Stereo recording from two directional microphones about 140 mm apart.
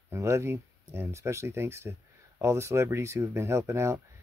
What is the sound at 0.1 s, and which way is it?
Speech, 20° right (ahead or behind).